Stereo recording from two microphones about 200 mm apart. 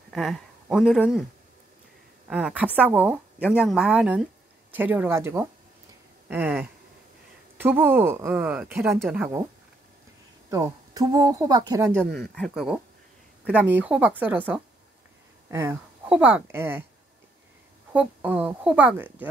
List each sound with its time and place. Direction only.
0.1 s speech: centre (ahead or behind)
2.2 s a woman's voice: 5° right (ahead or behind)
6.2 s a sound: 10° right (ahead or behind)
7.5 s a woman's voice: 10° right (ahead or behind)
10.5 s speech: 15° right (ahead or behind)
12.0 s a woman's voice: 5° left (ahead or behind)
17.9 s speech: 5° right (ahead or behind)